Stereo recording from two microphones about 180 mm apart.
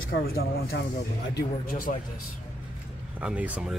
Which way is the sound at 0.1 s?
85° left.